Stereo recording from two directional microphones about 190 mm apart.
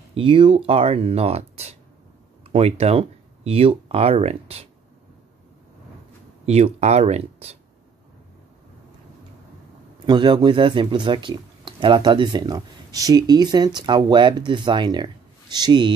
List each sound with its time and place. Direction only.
0.1 s speech: 25° right (ahead or behind)
6.4 s speech: 35° right (ahead or behind)
10.0 s speech: 25° right (ahead or behind)